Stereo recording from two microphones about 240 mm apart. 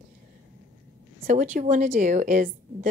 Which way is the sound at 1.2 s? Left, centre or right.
Right.